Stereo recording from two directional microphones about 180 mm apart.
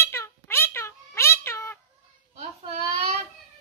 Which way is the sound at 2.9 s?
35° right (ahead or behind).